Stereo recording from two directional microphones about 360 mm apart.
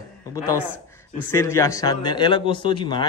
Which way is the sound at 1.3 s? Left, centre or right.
Centre.